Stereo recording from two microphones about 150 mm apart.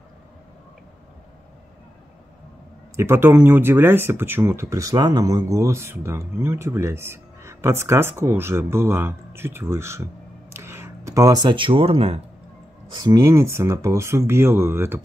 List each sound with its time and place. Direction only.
3.0 s speech: 15° right (ahead or behind); by 12.2 s 40° right (ahead or behind)
12.9 s speech: 25° right (ahead or behind)